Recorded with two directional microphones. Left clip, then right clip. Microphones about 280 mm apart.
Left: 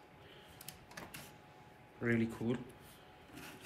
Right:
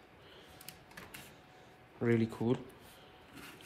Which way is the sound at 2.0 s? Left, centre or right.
Centre.